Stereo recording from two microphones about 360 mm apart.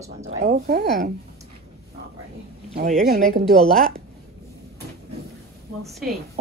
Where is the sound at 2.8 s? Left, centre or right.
Right.